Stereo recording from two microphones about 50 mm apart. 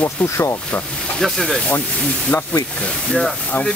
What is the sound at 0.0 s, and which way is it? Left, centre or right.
Speech, left.